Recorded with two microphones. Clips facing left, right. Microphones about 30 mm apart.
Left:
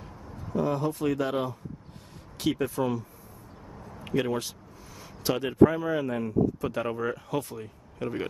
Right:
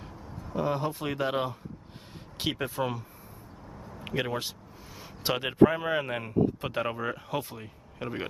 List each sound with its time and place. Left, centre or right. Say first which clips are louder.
0.5 s speech: left 2 dB; right
2.6 s speech: left 3 dB; right
4.0 s a sound: left 3 dB; right
5.6 s speech: left 1 dB; right
6.8 s speech: even; right